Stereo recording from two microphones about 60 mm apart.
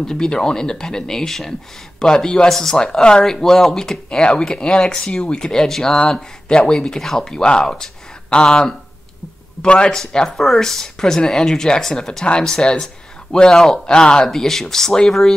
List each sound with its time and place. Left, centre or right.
0.0 s speech: centre